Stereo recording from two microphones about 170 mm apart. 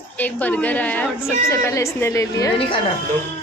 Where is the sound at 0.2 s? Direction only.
10° left (ahead or behind).